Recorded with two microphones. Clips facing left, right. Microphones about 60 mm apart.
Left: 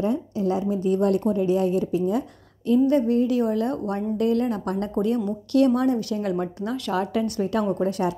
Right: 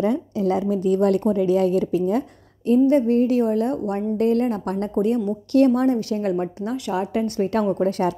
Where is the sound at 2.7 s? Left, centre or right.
Right.